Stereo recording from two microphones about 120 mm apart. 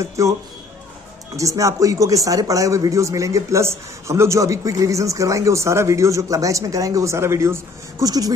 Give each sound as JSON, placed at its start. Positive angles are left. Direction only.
{"t": 0.2, "sound": "speech", "side_deg": -25}